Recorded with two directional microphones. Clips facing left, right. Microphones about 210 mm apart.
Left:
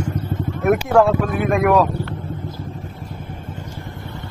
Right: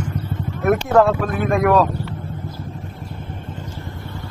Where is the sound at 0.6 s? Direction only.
5° left (ahead or behind).